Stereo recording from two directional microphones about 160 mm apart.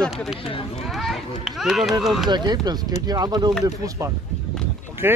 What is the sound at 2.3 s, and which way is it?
Speech, 25° right (ahead or behind).